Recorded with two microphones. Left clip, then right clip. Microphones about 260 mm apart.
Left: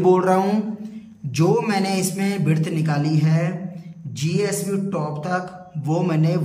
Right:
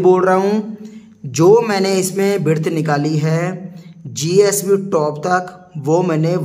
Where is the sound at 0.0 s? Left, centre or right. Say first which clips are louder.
Right 5 dB; centre.